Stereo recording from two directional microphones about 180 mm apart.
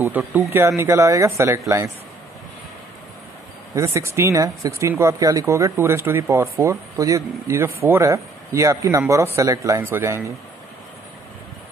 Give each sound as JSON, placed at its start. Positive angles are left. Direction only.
{"t": 0.1, "sound": "speech", "side_deg": -10}
{"t": 3.7, "sound": "speech", "side_deg": -15}